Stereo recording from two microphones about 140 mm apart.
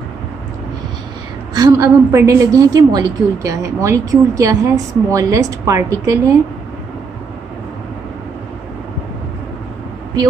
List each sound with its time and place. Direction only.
1.5 s a woman's voice: 25° right (ahead or behind)